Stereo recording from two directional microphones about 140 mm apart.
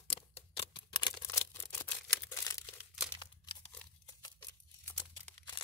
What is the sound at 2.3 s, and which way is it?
Crumpling, 20° left (ahead or behind).